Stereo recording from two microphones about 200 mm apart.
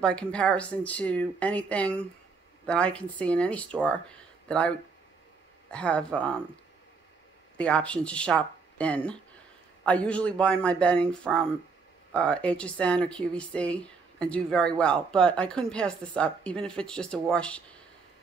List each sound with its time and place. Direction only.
0.0 s speech: 5° left (ahead or behind)
7.5 s speech: 5° left (ahead or behind)